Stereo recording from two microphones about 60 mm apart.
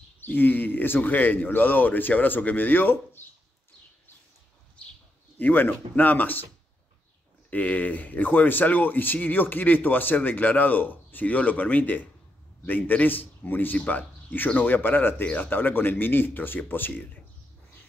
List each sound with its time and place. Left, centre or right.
0.2 s speech: left
5.4 s speech: left
7.5 s speech: left